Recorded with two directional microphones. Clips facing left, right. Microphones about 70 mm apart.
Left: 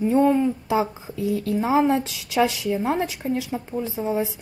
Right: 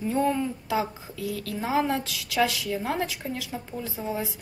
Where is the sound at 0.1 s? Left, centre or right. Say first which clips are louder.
Left 6 dB; left.